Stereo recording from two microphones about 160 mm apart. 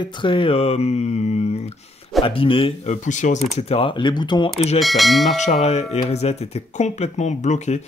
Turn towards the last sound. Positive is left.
turn(degrees=45)  # may be behind; listen again after turning